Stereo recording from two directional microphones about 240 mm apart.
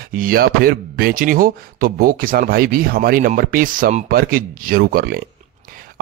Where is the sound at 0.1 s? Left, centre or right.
Right.